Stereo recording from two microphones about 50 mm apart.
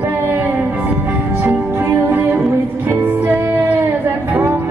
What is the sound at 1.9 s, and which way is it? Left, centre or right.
Music, right.